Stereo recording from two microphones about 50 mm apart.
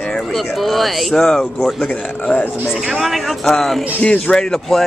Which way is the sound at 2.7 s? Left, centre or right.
Centre.